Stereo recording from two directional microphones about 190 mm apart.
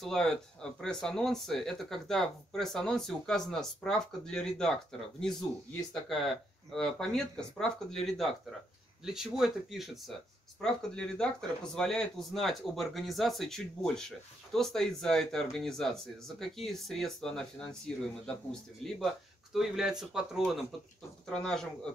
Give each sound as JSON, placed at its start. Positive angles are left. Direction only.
{"t": 0.0, "sound": "speech", "side_deg": 5}